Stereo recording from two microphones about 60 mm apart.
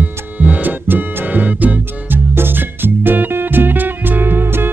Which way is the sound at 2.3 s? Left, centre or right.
Right.